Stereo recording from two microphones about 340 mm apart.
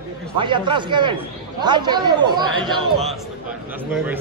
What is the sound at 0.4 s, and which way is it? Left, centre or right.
Speech, centre.